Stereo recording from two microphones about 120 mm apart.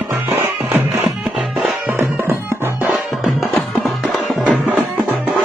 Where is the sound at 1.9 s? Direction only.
20° right (ahead or behind).